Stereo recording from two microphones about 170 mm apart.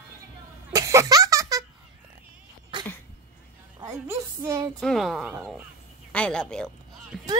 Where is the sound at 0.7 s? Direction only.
20° right (ahead or behind).